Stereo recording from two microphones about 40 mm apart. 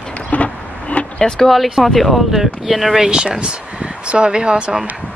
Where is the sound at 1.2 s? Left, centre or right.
Centre.